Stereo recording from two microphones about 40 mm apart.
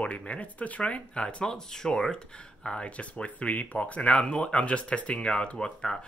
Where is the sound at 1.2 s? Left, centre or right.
Centre.